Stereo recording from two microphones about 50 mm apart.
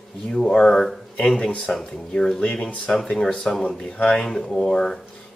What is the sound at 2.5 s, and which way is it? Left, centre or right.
Speech, left.